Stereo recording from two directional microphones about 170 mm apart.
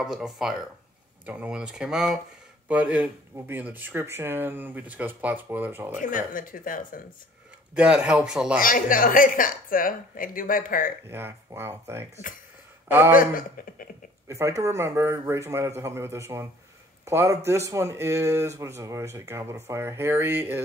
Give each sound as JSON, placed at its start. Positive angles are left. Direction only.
{"t": 0.0, "sound": "speech", "side_deg": -5}
{"t": 5.9, "sound": "a woman's voice", "side_deg": 50}
{"t": 7.7, "sound": "speech", "side_deg": -5}
{"t": 8.5, "sound": "a woman's voice", "side_deg": 55}
{"t": 11.1, "sound": "a man's voice", "side_deg": -15}
{"t": 13.1, "sound": "speech", "side_deg": 55}
{"t": 14.2, "sound": "speech", "side_deg": -15}